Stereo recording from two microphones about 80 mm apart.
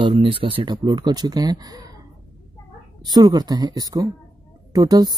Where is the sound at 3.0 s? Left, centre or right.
Right.